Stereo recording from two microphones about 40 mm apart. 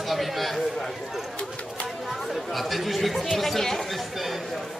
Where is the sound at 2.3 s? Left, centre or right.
Centre.